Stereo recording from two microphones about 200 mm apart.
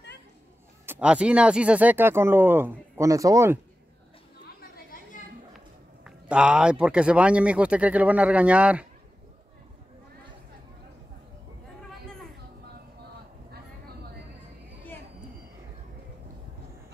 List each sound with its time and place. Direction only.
0.8 s speech: 5° right (ahead or behind)
4.6 s chatter: 45° left (ahead or behind)
6.0 s speech: 5° right (ahead or behind)